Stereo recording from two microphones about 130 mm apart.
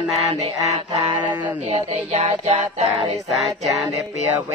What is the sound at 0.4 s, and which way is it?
Mantra, 55° right (ahead or behind).